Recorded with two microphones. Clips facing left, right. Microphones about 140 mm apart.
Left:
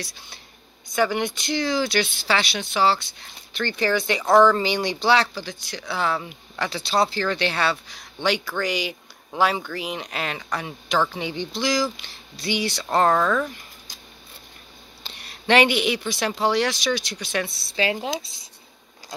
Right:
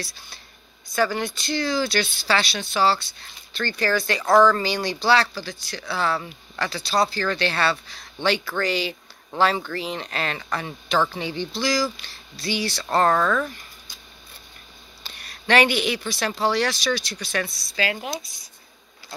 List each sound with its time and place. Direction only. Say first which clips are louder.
0.9 s speech: left 1 dB; 20° left (ahead or behind)
13.1 s speech: even; 5° left (ahead or behind)
15.0 s speech: left 2 dB; 20° left (ahead or behind)